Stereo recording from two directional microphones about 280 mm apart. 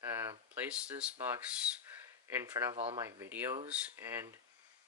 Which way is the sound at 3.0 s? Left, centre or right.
Centre.